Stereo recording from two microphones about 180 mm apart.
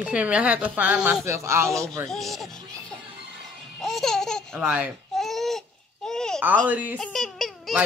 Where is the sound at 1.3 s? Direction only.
15° right (ahead or behind).